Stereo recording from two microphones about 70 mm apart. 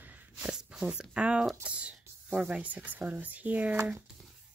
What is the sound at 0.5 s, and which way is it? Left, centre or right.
Speech, centre.